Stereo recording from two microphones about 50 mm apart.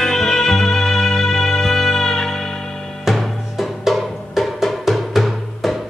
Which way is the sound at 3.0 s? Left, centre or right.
Centre.